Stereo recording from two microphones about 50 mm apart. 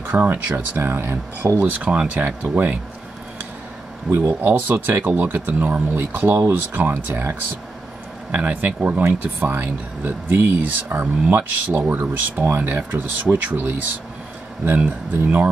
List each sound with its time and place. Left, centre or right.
0.2 s speech: right
1.6 s speech: right
4.1 s speech: right
4.4 s speech: right
5.9 s speech: right
6.7 s speech: right
8.3 s speech: right
9.0 s speech: right
14.8 s speech: right